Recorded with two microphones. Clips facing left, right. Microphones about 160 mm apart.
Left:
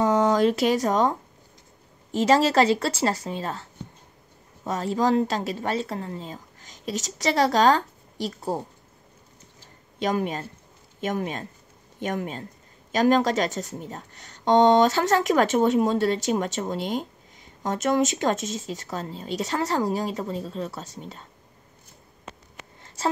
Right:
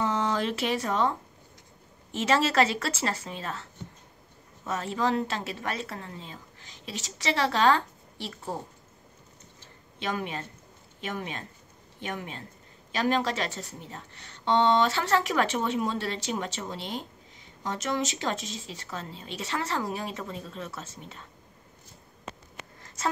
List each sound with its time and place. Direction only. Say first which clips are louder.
0.0 s speech: left 8 dB; 40° left (ahead or behind)
2.1 s a woman's voice: left 5 dB; 35° left (ahead or behind)
4.6 s a woman's voice: left 5 dB; 35° left (ahead or behind)
9.9 s a woman's voice: left 7 dB; 40° left (ahead or behind)
23.0 s speech: left 4 dB; 30° left (ahead or behind)